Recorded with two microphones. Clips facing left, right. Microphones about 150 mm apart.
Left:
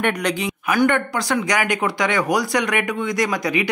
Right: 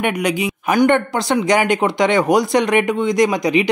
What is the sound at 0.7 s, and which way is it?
Speech, 25° right (ahead or behind).